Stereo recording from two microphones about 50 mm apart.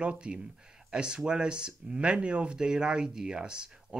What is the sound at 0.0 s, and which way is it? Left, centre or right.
Speech, right.